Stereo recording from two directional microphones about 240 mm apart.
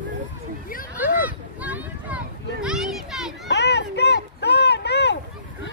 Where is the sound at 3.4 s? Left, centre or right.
Left.